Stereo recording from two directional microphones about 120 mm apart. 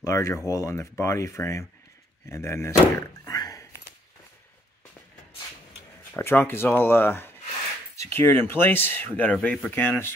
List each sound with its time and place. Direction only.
0.0 s speech: 25° left (ahead or behind)
6.1 s speech: 20° left (ahead or behind)